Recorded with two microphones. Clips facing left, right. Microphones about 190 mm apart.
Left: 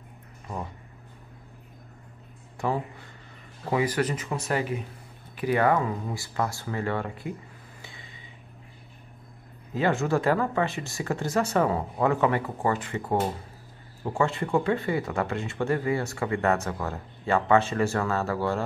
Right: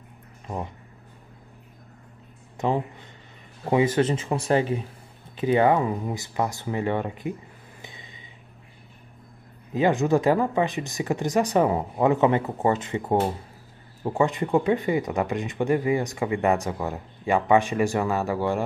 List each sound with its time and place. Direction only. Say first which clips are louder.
2.5 s speech: right 3 dB; 20° right (ahead or behind)
7.8 s a sound: right 3 dB; 20° right (ahead or behind)
9.8 s speech: right 4 dB; 15° right (ahead or behind)